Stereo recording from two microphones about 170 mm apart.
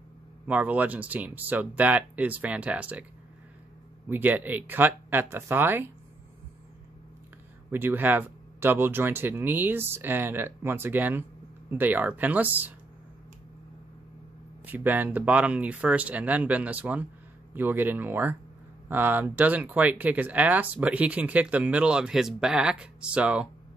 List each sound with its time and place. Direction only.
0.5 s speech: 10° right (ahead or behind)
4.1 s speech: 10° right (ahead or behind)
7.7 s speech: 10° right (ahead or behind)
14.7 s speech: 10° right (ahead or behind)